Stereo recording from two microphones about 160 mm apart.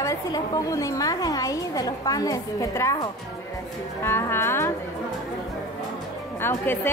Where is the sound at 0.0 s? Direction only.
20° left (ahead or behind).